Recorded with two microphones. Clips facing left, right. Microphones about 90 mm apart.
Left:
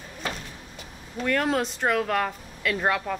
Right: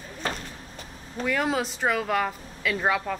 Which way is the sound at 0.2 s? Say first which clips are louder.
Right 2 dB; 35° right (ahead or behind).